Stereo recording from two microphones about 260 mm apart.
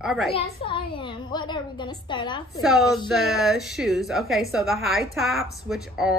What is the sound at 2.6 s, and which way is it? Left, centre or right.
Speech, centre.